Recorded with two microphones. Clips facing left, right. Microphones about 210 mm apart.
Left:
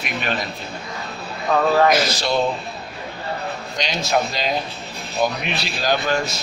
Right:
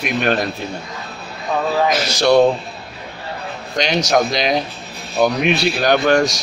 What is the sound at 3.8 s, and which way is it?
Speech, 70° right (ahead or behind).